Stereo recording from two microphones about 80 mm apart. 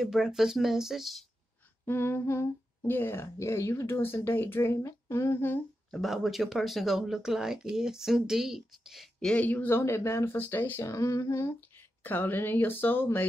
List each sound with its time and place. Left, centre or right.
0.0 s speech: centre
1.9 s speech: left
5.9 s speech: centre
9.2 s speech: centre
9.8 s speech: left
10.9 s speech: left
12.0 s speech: left